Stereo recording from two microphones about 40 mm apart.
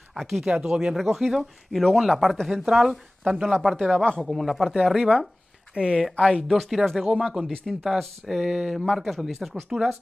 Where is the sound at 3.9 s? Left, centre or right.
Left.